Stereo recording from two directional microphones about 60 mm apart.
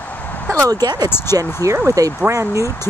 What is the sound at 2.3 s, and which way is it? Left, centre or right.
Speech, right.